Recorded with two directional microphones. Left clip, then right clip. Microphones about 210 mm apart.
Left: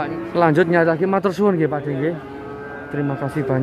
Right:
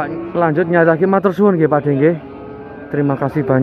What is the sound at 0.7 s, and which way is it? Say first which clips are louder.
Speech: right 4 dB; 10° left (ahead or behind).